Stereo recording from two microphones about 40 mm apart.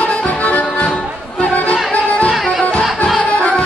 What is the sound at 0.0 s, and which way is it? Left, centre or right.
Music, left.